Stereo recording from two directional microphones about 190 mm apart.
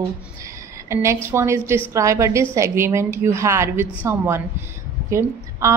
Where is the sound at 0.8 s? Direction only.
15° right (ahead or behind).